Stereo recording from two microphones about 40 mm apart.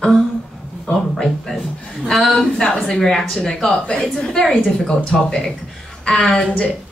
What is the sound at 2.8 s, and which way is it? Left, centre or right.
Speech, centre.